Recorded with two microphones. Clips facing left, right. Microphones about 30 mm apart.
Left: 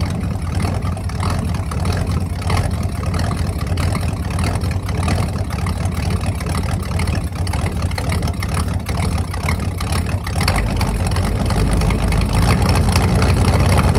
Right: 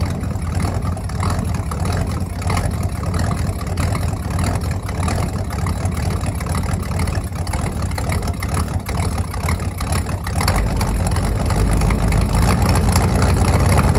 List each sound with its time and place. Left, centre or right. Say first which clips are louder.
10.4 s vehicle: left 1 dB; left